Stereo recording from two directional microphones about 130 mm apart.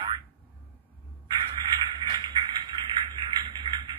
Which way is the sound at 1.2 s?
35° right (ahead or behind).